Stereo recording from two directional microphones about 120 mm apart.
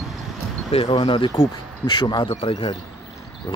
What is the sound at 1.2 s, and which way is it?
Speech, 30° left (ahead or behind).